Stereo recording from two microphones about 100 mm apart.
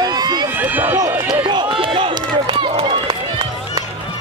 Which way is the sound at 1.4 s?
55° right (ahead or behind).